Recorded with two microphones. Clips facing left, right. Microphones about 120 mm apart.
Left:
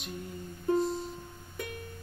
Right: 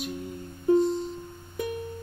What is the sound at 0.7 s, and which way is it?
Music, centre (ahead or behind).